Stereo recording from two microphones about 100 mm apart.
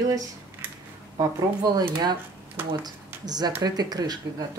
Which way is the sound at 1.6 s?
40° right (ahead or behind).